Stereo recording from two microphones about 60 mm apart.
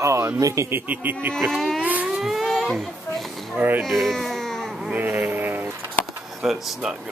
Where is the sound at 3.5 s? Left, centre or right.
Right.